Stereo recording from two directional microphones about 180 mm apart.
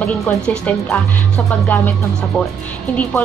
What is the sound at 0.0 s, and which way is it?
Speech, 5° left (ahead or behind).